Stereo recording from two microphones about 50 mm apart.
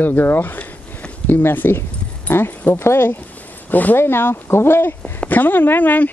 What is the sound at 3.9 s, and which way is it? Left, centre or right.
Speech, left.